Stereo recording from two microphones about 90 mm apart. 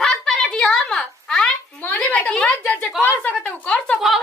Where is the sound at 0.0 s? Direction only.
5° left (ahead or behind).